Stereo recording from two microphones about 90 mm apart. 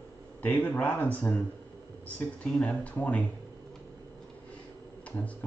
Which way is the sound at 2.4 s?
10° left (ahead or behind).